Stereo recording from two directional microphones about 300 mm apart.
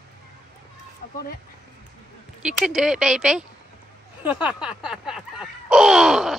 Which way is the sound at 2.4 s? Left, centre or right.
Centre.